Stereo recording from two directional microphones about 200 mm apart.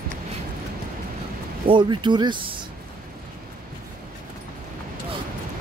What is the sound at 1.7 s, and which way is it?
Speech, 25° right (ahead or behind).